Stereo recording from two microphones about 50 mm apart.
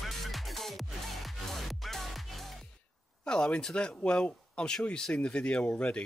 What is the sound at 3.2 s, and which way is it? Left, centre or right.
Speech, centre.